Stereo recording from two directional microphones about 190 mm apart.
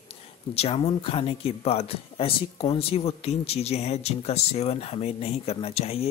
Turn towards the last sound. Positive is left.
turn(degrees=30)  # may be behind; listen again after turning